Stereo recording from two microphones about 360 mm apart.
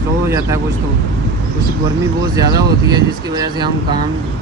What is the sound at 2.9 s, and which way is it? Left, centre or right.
Speech, centre.